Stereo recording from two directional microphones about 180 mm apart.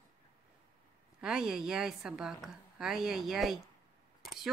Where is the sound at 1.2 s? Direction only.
5° right (ahead or behind).